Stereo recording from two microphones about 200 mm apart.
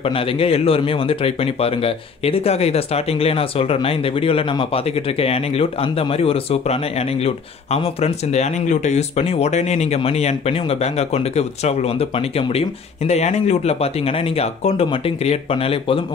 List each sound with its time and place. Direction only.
0.0 s speech: 30° left (ahead or behind)